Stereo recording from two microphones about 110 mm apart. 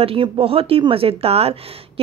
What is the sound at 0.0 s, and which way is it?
Speech, 55° right (ahead or behind).